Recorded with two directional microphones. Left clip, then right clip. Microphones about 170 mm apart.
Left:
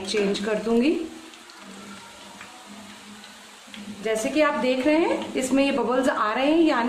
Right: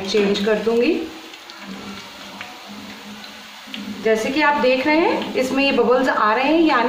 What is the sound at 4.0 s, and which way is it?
A woman's voice, 45° left (ahead or behind).